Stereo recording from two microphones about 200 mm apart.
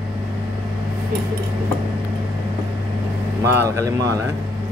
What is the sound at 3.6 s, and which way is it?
Speech, 15° right (ahead or behind).